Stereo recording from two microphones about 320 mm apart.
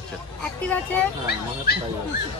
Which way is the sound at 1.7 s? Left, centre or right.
Left.